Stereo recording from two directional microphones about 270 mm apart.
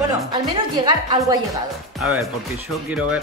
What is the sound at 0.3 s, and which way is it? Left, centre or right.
A woman's voice, centre.